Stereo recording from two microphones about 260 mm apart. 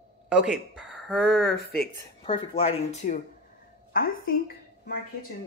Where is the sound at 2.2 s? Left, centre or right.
Left.